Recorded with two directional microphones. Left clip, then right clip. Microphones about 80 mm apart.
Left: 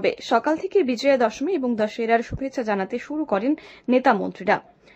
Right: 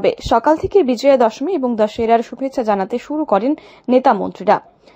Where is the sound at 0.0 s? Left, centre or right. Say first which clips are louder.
Right 7 dB; right.